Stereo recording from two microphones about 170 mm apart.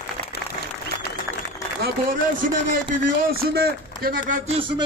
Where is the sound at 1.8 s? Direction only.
55° right (ahead or behind).